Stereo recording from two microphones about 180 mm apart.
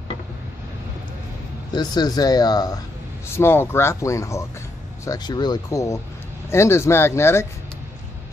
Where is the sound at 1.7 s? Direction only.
25° left (ahead or behind).